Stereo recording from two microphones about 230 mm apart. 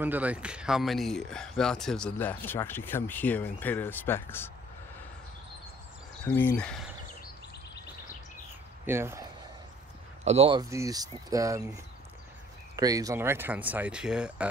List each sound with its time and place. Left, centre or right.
0.0 s speech: centre
6.2 s speech: centre
8.8 s speech: centre
10.2 s speech: right
12.7 s speech: centre